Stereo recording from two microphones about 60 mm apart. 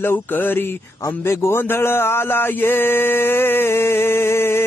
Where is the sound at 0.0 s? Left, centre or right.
Left.